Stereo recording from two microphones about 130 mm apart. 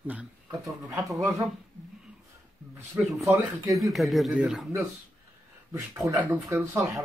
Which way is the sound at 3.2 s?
25° right (ahead or behind).